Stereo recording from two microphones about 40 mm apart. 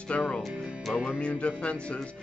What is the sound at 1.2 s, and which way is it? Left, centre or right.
Music, left.